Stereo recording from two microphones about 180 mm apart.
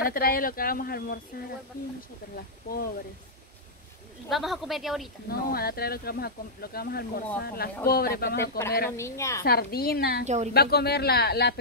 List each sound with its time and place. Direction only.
0.0 s speech: 55° left (ahead or behind)
2.3 s speech: 55° left (ahead or behind)
4.3 s speech: centre (ahead or behind)
5.3 s speech: 60° left (ahead or behind)
8.9 s a woman's voice: 15° left (ahead or behind)
9.4 s speech: 60° left (ahead or behind)
10.2 s speech: 40° right (ahead or behind)
10.5 s speech: 60° left (ahead or behind)